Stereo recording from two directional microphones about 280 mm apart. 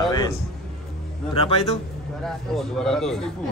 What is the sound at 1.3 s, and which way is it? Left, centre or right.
Speech, centre.